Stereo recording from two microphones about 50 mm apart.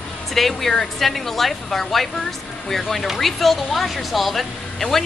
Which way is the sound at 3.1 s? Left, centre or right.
Centre.